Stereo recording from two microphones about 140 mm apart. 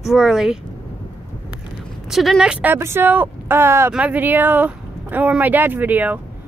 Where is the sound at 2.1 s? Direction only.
Centre (ahead or behind).